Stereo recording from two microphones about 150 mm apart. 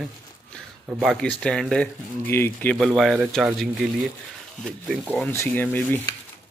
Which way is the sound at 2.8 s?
Centre (ahead or behind).